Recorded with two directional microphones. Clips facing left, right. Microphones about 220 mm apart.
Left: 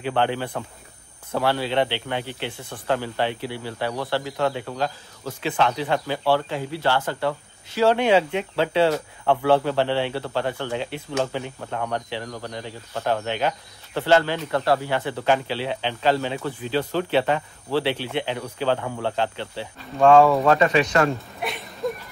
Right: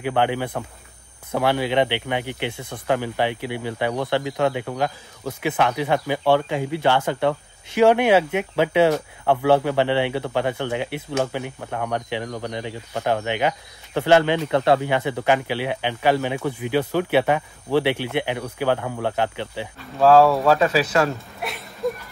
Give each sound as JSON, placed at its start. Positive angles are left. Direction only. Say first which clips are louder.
{"t": 0.0, "sound": "speech", "louder": "right 2 dB", "side_deg": -15}
{"t": 20.0, "sound": "speech", "louder": "even", "side_deg": 0}